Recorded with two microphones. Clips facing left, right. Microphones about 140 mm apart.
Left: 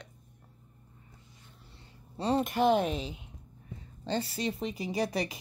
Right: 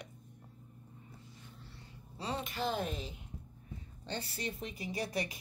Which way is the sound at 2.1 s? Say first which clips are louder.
Left 11 dB; 45° left (ahead or behind).